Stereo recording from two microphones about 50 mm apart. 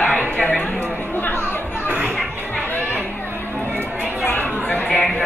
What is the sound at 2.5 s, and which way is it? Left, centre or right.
Music, left.